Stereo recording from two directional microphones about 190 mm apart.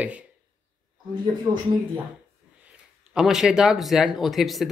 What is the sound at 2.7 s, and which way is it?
Speech, 5° right (ahead or behind).